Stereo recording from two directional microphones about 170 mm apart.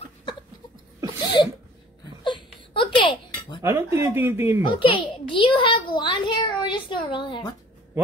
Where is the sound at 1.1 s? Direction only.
25° left (ahead or behind).